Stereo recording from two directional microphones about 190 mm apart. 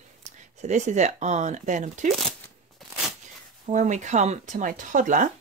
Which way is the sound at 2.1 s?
Centre (ahead or behind).